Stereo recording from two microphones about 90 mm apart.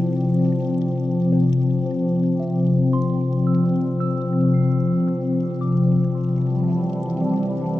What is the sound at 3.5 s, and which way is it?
Music, 50° left (ahead or behind).